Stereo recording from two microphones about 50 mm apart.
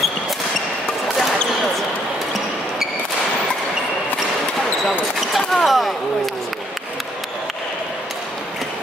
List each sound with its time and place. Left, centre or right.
5.5 s basketball bounce: centre